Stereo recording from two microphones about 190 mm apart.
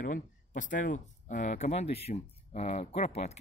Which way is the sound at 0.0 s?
45° left (ahead or behind).